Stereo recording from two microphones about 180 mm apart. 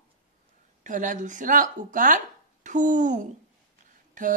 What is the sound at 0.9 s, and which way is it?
Speech, 45° right (ahead or behind).